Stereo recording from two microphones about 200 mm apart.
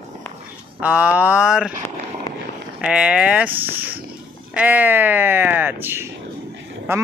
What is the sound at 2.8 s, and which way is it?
Speech, 5° right (ahead or behind).